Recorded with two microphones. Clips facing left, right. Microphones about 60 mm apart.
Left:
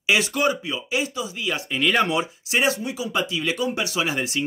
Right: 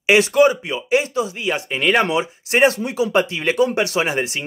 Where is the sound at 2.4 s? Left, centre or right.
Right.